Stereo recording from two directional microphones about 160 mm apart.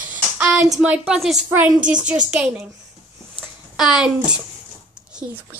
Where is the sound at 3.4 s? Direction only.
5° right (ahead or behind).